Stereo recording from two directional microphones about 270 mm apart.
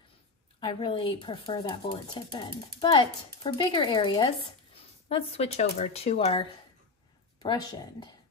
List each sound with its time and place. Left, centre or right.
0.6 s speech: centre
7.4 s speech: centre